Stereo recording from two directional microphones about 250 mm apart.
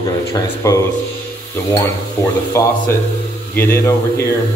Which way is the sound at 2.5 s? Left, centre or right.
Centre.